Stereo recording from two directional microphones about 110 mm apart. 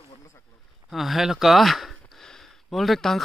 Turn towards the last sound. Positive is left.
turn(degrees=0)  # may be behind; listen again after turning